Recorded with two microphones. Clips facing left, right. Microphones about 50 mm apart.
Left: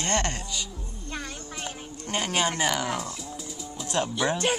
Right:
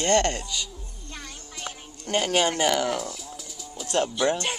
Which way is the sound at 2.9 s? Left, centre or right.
Left.